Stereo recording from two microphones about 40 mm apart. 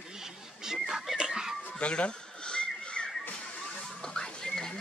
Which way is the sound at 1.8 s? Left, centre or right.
Left.